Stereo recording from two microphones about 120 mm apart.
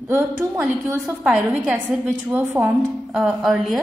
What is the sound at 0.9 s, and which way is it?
Speech, 20° right (ahead or behind).